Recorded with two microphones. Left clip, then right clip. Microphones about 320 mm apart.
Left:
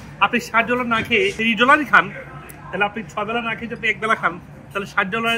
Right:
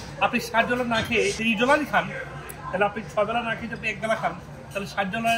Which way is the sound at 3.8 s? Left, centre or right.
Centre.